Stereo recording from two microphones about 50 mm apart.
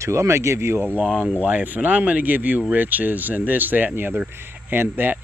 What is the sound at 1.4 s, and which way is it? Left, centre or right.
Speech, right.